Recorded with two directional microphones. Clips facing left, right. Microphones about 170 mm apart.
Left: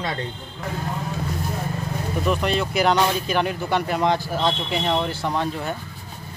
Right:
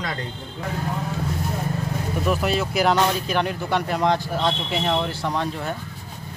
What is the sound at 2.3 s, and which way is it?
Speech, 5° right (ahead or behind).